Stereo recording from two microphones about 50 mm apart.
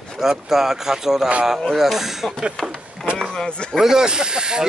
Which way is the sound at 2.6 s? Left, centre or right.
Centre.